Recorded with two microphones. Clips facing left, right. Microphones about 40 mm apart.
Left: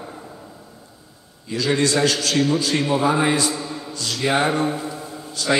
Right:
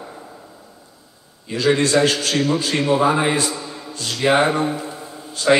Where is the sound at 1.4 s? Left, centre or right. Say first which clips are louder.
Right 3 dB; right.